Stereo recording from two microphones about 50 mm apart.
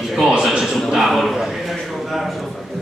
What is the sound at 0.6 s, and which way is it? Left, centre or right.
Speech, centre.